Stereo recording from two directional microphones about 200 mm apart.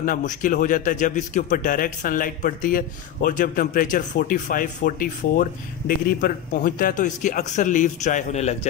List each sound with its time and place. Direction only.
0.0 s a man's voice: 40° left (ahead or behind)